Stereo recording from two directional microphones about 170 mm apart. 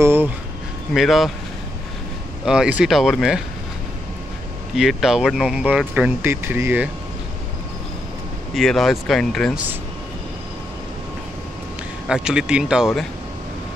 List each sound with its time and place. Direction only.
0.0 s a sound: 15° right (ahead or behind)
0.9 s speech: centre (ahead or behind)
2.4 s speech: 5° right (ahead or behind)
4.7 s speech: 5° right (ahead or behind)
8.5 s speech: centre (ahead or behind)
12.1 s speech: 5° right (ahead or behind)